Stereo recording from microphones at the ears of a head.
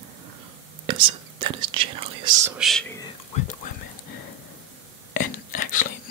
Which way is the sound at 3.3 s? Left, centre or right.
Left.